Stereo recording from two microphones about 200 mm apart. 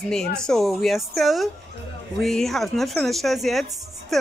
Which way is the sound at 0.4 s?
Centre (ahead or behind).